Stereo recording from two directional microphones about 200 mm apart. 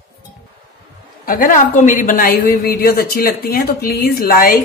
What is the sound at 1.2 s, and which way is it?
A woman's voice, 45° left (ahead or behind).